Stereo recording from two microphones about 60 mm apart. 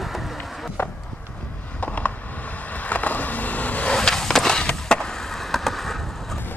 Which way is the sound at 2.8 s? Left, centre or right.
Left.